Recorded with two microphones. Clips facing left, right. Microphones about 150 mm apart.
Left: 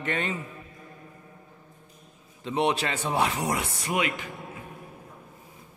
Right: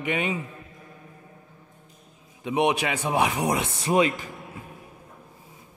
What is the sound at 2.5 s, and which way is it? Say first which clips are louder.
A man's voice: right 3 dB; 15° right (ahead or behind).